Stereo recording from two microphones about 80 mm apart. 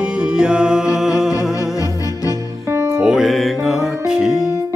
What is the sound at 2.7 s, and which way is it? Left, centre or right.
Music, right.